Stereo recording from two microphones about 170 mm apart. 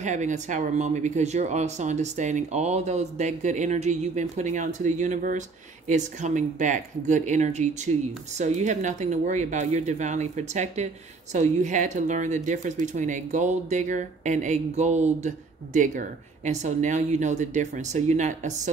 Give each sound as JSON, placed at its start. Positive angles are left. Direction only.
{"t": 0.0, "sound": "speech", "side_deg": -45}